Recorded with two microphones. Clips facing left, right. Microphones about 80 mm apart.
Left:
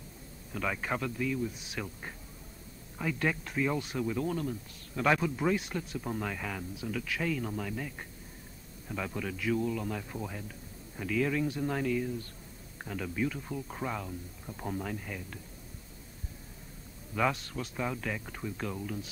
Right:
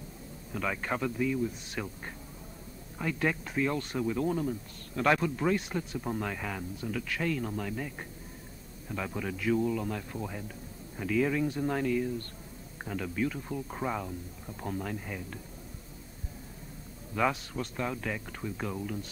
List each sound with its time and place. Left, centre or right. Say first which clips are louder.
0.5 s speech: right 1 dB; centre
15.0 s speech: right 2 dB; centre
17.1 s speech: right 1 dB; centre